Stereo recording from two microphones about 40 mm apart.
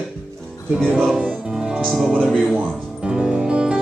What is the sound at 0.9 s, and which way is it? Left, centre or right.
Music, centre.